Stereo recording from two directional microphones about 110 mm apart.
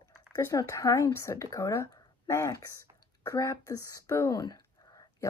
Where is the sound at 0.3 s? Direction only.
25° left (ahead or behind).